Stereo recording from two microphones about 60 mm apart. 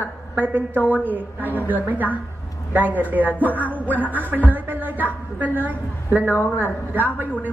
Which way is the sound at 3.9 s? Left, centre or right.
Right.